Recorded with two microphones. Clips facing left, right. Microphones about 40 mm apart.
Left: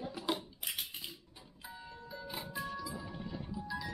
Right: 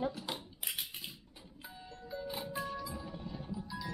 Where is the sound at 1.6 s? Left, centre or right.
Centre.